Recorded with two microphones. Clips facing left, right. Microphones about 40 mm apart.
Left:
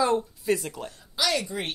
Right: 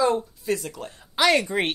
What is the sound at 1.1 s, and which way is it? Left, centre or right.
Speech, right.